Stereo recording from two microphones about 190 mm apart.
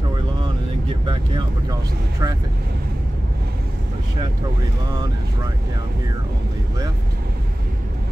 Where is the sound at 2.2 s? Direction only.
20° right (ahead or behind).